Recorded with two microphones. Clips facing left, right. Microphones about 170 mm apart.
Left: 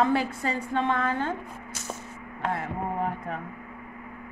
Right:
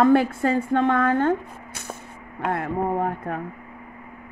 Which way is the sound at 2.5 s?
55° right (ahead or behind).